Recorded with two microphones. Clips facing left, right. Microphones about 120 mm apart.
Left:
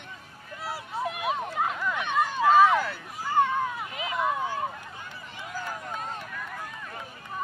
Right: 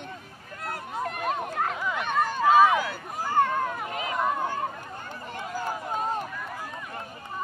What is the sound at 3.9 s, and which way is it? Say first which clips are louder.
Run: right 3 dB; 45° right (ahead or behind).